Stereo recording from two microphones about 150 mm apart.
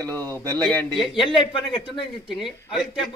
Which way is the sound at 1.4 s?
35° left (ahead or behind).